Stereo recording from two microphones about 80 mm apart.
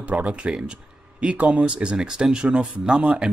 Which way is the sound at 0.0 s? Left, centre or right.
Centre.